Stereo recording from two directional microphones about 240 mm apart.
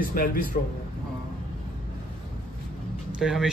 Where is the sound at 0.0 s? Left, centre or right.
Left.